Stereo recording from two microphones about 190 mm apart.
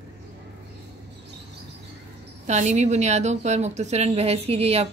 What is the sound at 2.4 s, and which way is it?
Speech, 40° right (ahead or behind).